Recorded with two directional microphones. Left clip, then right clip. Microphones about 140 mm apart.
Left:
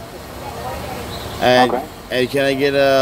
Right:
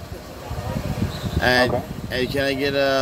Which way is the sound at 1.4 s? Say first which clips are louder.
Left 5 dB; 20° left (ahead or behind).